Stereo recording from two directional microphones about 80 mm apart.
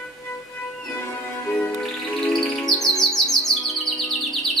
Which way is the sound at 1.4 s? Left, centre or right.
Centre.